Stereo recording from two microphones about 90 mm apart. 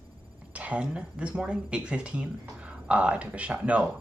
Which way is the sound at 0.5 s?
15° right (ahead or behind).